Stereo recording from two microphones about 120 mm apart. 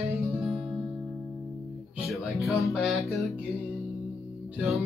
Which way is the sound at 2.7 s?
Centre (ahead or behind).